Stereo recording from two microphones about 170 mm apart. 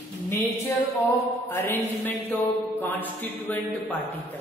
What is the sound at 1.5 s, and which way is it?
Mantra, 10° left (ahead or behind).